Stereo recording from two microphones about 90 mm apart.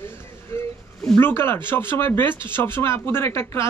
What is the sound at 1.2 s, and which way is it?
Speech, 25° left (ahead or behind).